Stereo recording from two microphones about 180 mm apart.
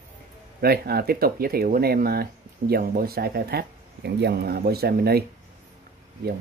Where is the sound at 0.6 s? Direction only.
60° right (ahead or behind).